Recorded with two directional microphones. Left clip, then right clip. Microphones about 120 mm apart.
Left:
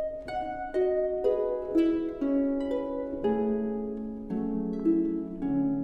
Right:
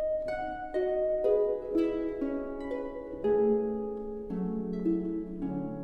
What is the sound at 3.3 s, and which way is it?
Harp, 15° left (ahead or behind).